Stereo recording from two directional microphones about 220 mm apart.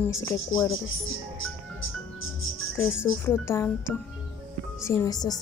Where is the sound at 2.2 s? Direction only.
65° left (ahead or behind).